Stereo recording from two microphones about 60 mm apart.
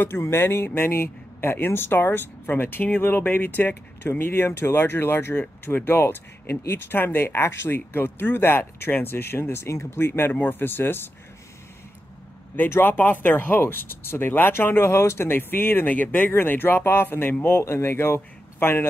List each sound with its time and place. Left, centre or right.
0.2 s speech: left
12.5 s speech: left